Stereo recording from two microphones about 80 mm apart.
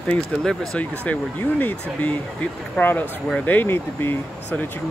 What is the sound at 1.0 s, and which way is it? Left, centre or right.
Speech, centre.